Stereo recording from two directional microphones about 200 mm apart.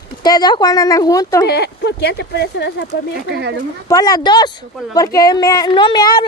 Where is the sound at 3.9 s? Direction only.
20° left (ahead or behind).